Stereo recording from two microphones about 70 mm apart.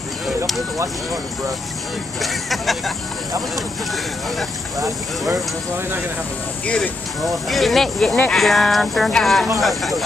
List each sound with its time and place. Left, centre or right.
2.2 s speech: centre
6.6 s speech: centre
7.4 s speech: centre